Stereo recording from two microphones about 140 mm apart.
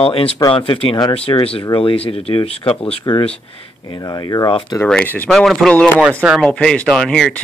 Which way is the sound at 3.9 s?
25° left (ahead or behind).